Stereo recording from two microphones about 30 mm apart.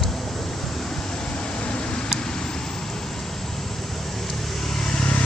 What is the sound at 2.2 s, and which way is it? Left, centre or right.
Vehicle, left.